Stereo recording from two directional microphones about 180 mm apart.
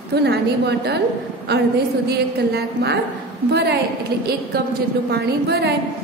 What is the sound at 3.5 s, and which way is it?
Speech, 65° right (ahead or behind).